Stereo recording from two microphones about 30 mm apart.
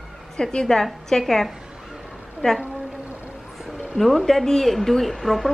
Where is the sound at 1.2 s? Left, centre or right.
Centre.